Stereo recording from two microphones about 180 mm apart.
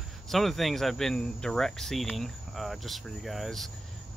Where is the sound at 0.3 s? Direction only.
Centre (ahead or behind).